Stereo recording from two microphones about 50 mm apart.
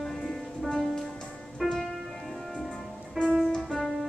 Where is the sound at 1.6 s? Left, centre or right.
Centre.